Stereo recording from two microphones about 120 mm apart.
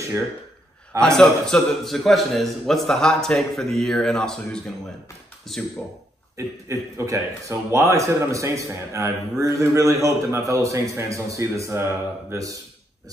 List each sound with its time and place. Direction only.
1.0 s a man's voice: 5° left (ahead or behind)
6.3 s a man's voice: 25° right (ahead or behind)